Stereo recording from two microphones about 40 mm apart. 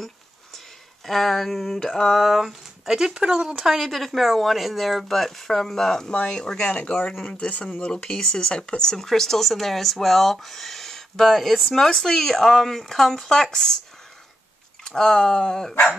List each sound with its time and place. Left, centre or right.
1.0 s speech: centre
2.1 s speech: centre
3.8 s speech: centre
6.0 s speech: left
7.2 s speech: left
7.8 s speech: centre
8.4 s speech: left
8.9 s speech: centre
14.9 s speech: centre